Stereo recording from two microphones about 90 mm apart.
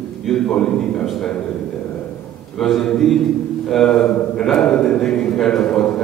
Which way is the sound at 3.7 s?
5° left (ahead or behind).